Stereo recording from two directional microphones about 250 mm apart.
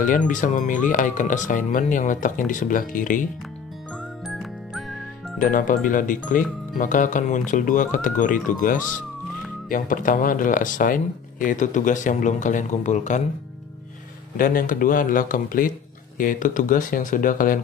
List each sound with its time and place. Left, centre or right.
0.3 s speech: left
4.3 s music: centre
5.4 s speech: left
14.3 s speech: left